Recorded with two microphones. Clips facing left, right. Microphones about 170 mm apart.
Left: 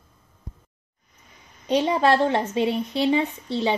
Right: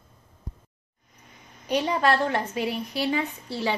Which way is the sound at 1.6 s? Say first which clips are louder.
Left 3 dB; 25° left (ahead or behind).